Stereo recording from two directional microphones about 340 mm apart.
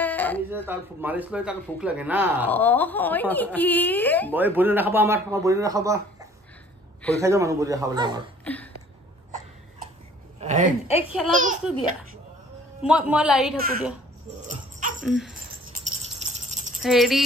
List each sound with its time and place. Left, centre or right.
0.0 s a sound: centre
0.7 s speech: centre
2.5 s speech: centre
4.3 s a man's voice: centre
8.5 s speech: centre
10.4 s a woman's voice: right
11.1 s speech: centre
12.8 s speech: centre
14.5 s dog: right
15.0 s speech: centre
16.2 s rattle: centre
16.8 s speech: centre